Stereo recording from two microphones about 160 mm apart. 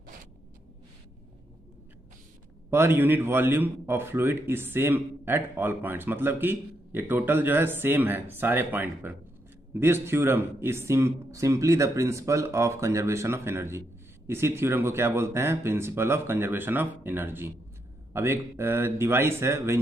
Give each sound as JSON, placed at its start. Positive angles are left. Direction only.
{"t": 2.7, "sound": "a man's voice", "side_deg": -15}